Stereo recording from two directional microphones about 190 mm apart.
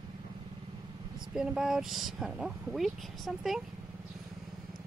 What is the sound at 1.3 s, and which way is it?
Speech, 5° right (ahead or behind).